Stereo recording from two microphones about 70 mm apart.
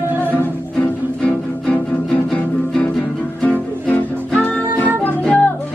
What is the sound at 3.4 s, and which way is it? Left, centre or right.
Music, centre.